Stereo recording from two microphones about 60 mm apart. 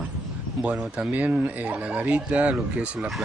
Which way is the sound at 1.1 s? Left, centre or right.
Right.